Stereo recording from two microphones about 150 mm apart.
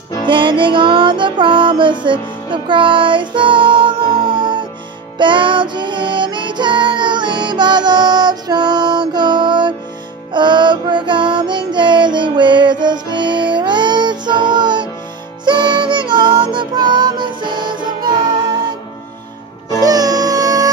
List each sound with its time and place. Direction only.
0.3 s music: 35° right (ahead or behind)
19.8 s music: 25° right (ahead or behind)